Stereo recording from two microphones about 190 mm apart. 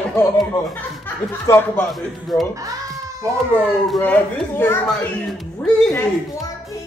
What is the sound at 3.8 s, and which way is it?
Speech, 5° left (ahead or behind).